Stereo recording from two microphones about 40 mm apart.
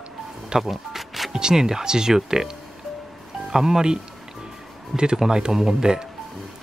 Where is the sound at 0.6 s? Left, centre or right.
Centre.